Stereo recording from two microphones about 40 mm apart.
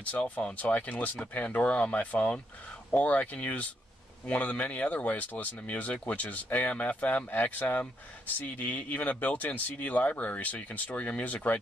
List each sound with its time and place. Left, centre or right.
0.2 s speech: left